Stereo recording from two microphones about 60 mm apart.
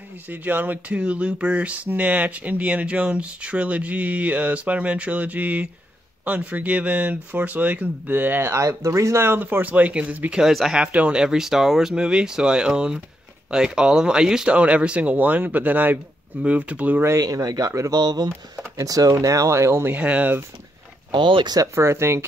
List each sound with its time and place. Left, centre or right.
0.3 s speech: right
0.9 s speech: centre
8.5 s speech: right
10.3 s speech: centre
10.8 s speech: centre
17.2 s speech: right
19.2 s speech: right
20.0 s speech: right
21.7 s speech: right